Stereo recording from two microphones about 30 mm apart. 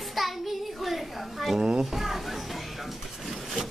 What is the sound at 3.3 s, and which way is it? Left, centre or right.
Wood, centre.